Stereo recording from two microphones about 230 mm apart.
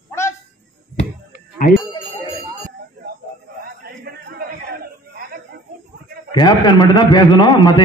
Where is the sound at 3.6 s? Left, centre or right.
Right.